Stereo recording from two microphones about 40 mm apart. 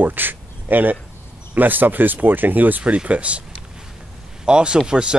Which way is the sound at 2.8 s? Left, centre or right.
Right.